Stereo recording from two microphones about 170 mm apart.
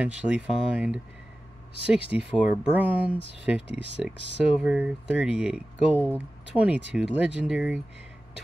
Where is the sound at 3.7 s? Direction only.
90° right.